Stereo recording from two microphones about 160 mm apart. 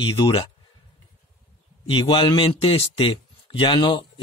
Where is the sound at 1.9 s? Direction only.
35° left (ahead or behind).